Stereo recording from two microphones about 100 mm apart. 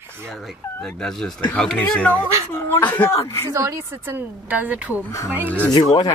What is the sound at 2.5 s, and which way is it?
Speech, 20° left (ahead or behind).